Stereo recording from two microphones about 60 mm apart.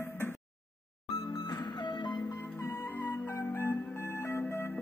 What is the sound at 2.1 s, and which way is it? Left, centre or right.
Music, left.